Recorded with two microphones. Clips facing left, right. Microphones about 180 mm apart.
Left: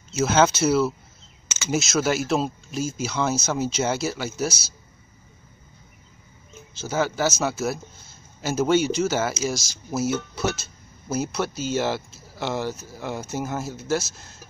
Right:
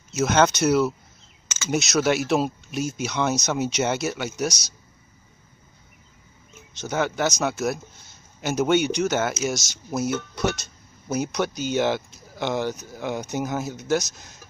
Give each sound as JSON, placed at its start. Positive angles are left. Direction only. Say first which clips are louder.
{"t": 0.2, "sound": "a man's voice", "louder": "even", "side_deg": 5}
{"t": 6.9, "sound": "a man's voice", "louder": "even", "side_deg": 0}